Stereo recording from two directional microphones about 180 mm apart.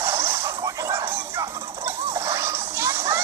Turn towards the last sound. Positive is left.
turn(degrees=-15)  # may be behind; listen again after turning